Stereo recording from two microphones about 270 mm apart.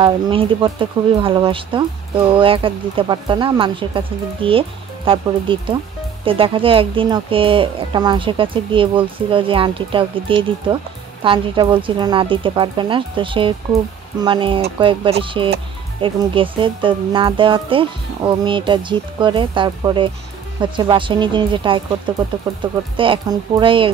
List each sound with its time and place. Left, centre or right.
0.0 s speech: centre